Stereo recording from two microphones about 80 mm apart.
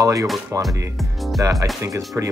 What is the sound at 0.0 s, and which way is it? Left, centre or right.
Speech, right.